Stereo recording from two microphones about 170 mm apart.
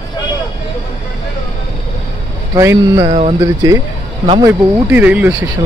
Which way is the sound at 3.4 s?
20° right (ahead or behind).